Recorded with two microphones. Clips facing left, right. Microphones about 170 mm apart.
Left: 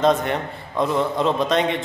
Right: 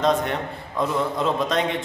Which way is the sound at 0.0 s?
Centre (ahead or behind).